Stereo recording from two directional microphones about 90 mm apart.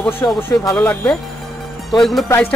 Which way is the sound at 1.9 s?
5° left (ahead or behind).